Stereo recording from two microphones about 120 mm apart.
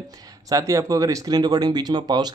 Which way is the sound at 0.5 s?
30° right (ahead or behind).